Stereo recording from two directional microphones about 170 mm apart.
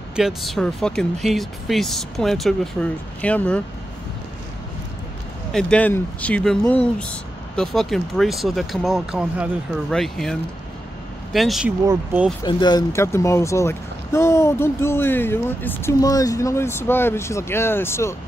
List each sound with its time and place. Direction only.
0.1 s speech: centre (ahead or behind)
5.5 s speech: 5° left (ahead or behind)
11.3 s speech: centre (ahead or behind)
12.4 s speech: 25° left (ahead or behind)